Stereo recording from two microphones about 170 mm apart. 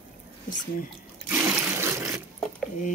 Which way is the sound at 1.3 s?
15° right (ahead or behind).